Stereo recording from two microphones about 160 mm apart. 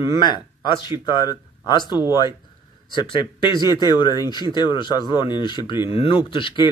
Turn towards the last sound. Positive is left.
turn(degrees=30)  # may be behind; listen again after turning